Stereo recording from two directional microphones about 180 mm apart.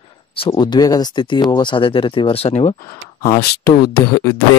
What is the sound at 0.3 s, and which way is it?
Speech, 25° left (ahead or behind).